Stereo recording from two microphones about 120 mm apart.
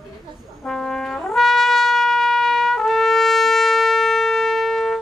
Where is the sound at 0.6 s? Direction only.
5° left (ahead or behind).